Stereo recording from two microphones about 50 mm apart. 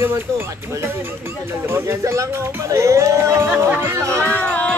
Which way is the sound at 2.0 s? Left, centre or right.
Right.